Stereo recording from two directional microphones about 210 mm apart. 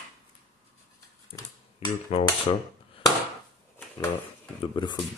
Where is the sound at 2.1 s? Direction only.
30° left (ahead or behind).